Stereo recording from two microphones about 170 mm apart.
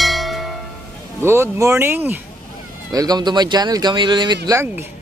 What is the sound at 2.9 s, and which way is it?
Speech, 25° right (ahead or behind).